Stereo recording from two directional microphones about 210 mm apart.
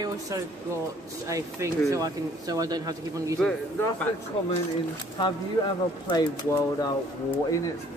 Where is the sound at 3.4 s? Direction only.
5° left (ahead or behind).